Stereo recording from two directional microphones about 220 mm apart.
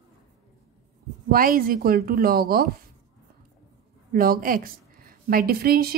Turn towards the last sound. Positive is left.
turn(degrees=-45)  # may be behind; listen again after turning